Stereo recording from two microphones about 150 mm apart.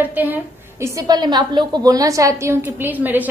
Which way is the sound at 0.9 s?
25° right (ahead or behind).